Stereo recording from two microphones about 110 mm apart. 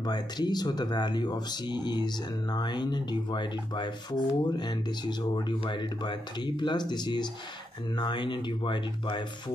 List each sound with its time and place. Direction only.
0.0 s speech: 40° left (ahead or behind)